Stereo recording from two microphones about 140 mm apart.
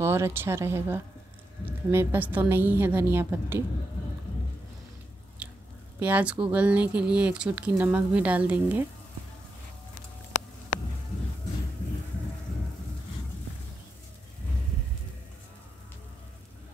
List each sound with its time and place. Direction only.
0.0 s speech: 20° right (ahead or behind)
5.4 s chewing: 10° right (ahead or behind)
5.9 s speech: 10° right (ahead or behind)